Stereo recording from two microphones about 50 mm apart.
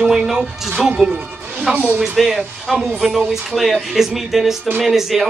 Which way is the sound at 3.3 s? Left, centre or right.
Centre.